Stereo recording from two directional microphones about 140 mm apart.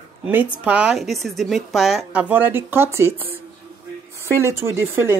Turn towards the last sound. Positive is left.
turn(degrees=-15)  # may be behind; listen again after turning